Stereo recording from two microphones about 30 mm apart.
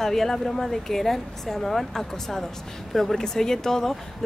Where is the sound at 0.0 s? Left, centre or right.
Centre.